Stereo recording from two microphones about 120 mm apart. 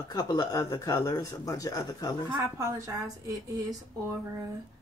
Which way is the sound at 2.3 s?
25° right (ahead or behind).